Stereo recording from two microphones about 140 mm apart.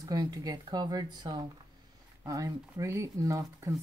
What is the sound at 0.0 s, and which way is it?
Speech, 25° right (ahead or behind).